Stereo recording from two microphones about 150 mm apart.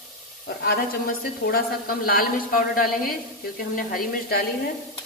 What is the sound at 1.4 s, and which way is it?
A man's voice, 85° left.